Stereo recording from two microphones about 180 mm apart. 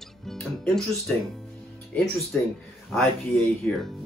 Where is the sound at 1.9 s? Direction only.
5° left (ahead or behind).